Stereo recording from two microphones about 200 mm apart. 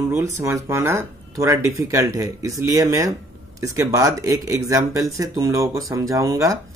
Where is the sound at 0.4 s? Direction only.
15° right (ahead or behind).